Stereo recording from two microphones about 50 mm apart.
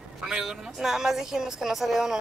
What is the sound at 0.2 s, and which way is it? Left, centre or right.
A woman's voice, centre.